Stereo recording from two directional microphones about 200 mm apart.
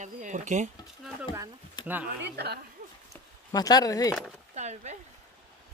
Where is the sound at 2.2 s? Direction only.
55° right (ahead or behind).